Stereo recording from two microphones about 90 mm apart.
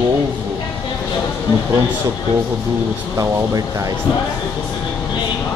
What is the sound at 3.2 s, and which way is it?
Speech, 40° right (ahead or behind).